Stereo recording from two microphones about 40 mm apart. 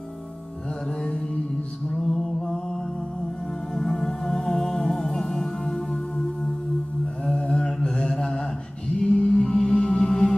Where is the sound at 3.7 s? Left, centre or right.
Centre.